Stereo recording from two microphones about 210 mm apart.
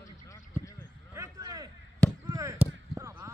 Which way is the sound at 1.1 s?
15° right (ahead or behind).